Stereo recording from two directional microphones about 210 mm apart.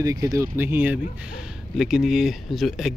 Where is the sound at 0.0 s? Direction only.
15° right (ahead or behind).